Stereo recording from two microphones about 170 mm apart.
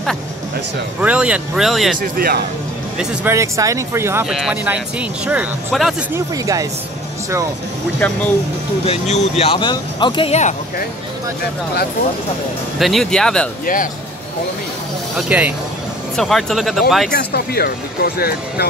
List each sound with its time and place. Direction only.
1.0 s speech: 5° right (ahead or behind)
2.1 s speech: 60° right (ahead or behind)
3.3 s speech: 20° right (ahead or behind)
4.3 s speech: 5° right (ahead or behind)
6.1 s speech: 20° right (ahead or behind)
8.0 s speech: 10° left (ahead or behind)
8.8 s speech: 40° left (ahead or behind)
12.7 s speech: centre (ahead or behind)
15.1 s speech: 10° right (ahead or behind)
17.1 s speech: 70° left (ahead or behind)